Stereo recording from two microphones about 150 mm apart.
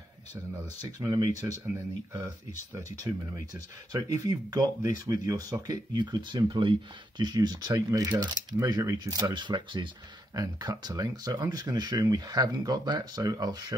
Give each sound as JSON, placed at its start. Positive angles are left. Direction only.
{"t": 0.9, "sound": "speech", "side_deg": -25}